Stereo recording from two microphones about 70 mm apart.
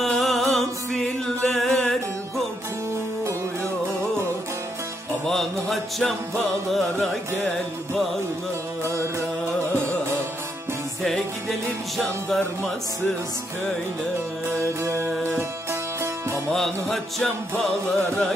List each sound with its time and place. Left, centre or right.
0.0 s music: centre
5.2 s music: centre
11.0 s music: centre
14.8 s music: right
16.4 s music: centre